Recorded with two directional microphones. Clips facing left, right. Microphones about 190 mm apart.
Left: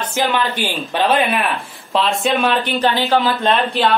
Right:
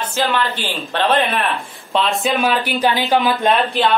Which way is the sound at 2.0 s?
Centre (ahead or behind).